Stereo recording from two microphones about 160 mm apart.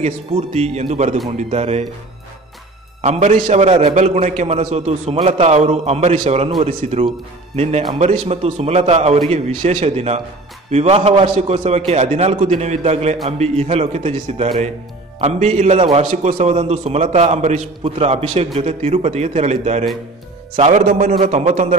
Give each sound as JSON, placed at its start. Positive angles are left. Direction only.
{"t": 0.0, "sound": "a man's voice", "side_deg": -45}
{"t": 3.0, "sound": "a man's voice", "side_deg": -45}
{"t": 20.8, "sound": "a man's voice", "side_deg": -60}
{"t": 21.1, "sound": "a man's voice", "side_deg": -40}